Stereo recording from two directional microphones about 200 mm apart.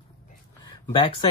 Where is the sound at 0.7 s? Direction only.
25° left (ahead or behind).